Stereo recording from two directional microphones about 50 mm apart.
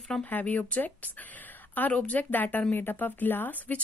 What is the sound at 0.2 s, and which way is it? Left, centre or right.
Speech, left.